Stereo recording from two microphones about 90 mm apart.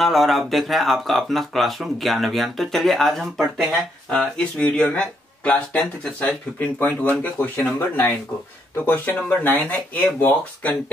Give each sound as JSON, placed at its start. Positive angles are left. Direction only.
{"t": 0.0, "sound": "speech", "side_deg": 0}
{"t": 6.8, "sound": "speech", "side_deg": 20}